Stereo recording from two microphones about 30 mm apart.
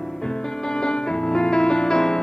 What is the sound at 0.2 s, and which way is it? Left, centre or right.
Music, left.